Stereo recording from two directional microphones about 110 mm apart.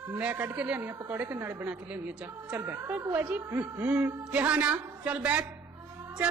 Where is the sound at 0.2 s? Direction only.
15° right (ahead or behind).